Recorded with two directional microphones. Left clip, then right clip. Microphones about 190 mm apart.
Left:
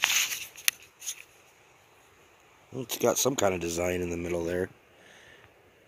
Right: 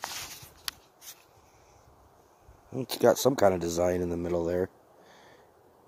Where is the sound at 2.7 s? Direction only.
20° right (ahead or behind).